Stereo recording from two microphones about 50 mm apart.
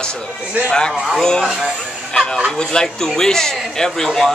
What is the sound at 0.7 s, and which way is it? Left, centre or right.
Speech, centre.